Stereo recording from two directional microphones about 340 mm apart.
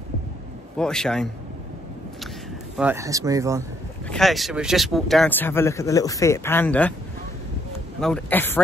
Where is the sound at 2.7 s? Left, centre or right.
Centre.